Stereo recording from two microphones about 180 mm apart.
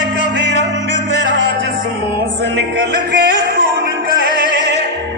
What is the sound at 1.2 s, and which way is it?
Music, 85° right.